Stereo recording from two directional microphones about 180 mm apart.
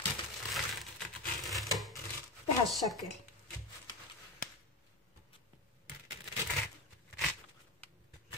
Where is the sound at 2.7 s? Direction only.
Centre (ahead or behind).